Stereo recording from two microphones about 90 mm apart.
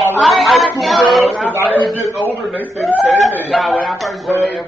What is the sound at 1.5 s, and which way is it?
Speech, 20° right (ahead or behind).